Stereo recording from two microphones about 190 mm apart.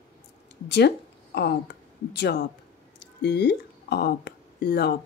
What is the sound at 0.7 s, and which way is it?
Speech, 60° left (ahead or behind).